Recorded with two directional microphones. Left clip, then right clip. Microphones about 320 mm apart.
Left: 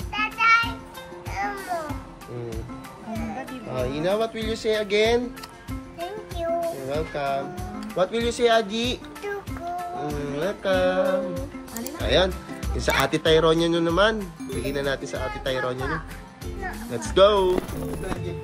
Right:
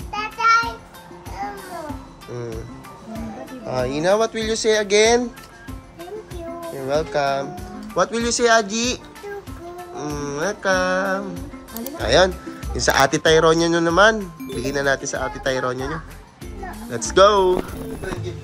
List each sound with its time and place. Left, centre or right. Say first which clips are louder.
0.1 s music: right 2 dB; right
3.7 s speech: right 6 dB; centre
6.6 s speech: right 4 dB; centre
10.0 s music: right 6 dB; centre
11.7 s speech: right 5 dB; centre